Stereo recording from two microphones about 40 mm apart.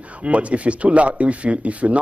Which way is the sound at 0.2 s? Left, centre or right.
Right.